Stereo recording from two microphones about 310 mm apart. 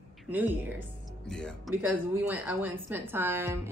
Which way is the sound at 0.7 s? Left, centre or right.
Centre.